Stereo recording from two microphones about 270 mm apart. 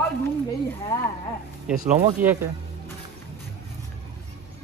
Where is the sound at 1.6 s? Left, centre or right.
Centre.